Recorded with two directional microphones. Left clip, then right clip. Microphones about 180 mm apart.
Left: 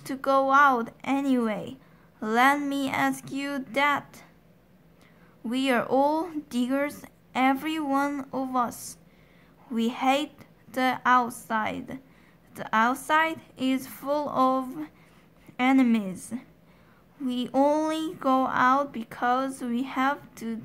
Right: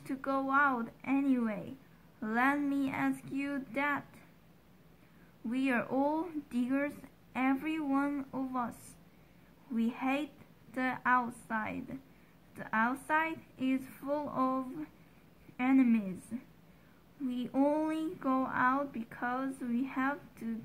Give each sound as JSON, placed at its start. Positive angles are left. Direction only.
{"t": 0.0, "sound": "a woman's voice", "side_deg": 30}
{"t": 5.5, "sound": "a woman's voice", "side_deg": 30}
{"t": 9.8, "sound": "a woman's voice", "side_deg": 30}
{"t": 17.3, "sound": "speech", "side_deg": 30}